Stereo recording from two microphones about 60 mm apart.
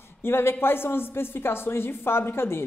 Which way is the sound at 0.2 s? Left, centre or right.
Left.